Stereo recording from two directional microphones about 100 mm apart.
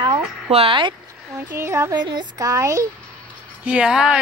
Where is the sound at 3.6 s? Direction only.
10° right (ahead or behind).